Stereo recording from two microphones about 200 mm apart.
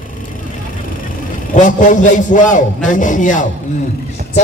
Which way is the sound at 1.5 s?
40° left (ahead or behind).